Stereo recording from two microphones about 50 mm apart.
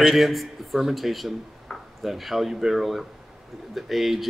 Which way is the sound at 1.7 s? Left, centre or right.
Centre.